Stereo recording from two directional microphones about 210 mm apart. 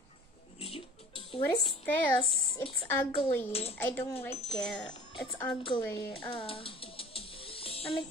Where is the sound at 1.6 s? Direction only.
5° left (ahead or behind).